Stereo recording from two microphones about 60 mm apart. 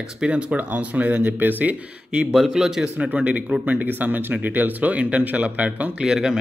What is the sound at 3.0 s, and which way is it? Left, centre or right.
Speech, right.